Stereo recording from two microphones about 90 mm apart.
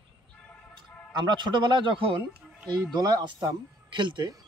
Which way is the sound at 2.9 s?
50° right (ahead or behind).